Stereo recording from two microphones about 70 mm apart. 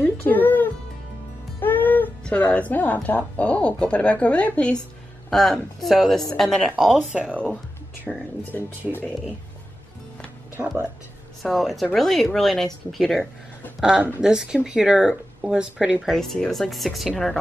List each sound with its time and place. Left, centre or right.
0.0 s music: left
2.2 s a woman's voice: centre
5.3 s speech: centre
6.8 s speech: centre
8.1 s speech: centre
11.4 s speech: centre
13.7 s speech: centre
16.1 s speech: centre